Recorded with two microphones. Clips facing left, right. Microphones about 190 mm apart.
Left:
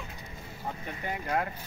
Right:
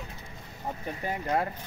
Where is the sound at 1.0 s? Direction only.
35° right (ahead or behind).